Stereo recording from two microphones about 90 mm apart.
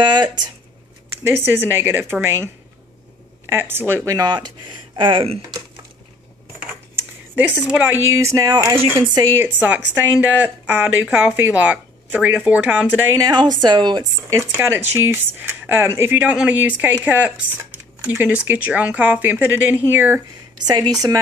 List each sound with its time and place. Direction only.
0.0 s speech: 55° right (ahead or behind)
1.2 s speech: 25° right (ahead or behind)
4.1 s speech: 50° right (ahead or behind); by 5.4 s 80° right
7.8 s speech: 25° right (ahead or behind)
8.5 s a woman's voice: 45° right (ahead or behind)
9.3 s speech: 20° right (ahead or behind)
13.2 s speech: 55° right (ahead or behind)
14.3 s speech: 25° right (ahead or behind)
20.6 s a woman's voice: 50° right (ahead or behind)